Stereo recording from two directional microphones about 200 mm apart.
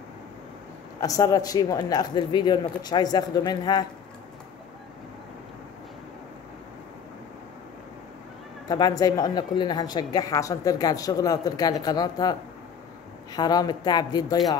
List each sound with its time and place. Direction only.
1.0 s a woman's voice: 15° left (ahead or behind)
8.6 s a woman's voice: 20° left (ahead or behind)